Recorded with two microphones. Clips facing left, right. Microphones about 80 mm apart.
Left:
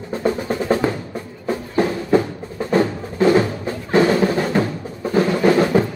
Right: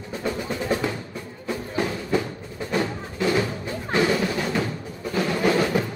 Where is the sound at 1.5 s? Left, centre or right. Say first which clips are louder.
Left 7 dB; left.